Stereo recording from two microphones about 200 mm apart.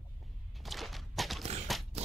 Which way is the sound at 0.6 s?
Centre (ahead or behind).